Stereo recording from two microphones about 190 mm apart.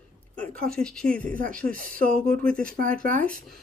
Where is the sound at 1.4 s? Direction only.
45° right (ahead or behind).